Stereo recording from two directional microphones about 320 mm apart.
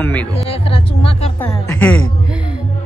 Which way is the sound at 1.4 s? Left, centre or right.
Centre.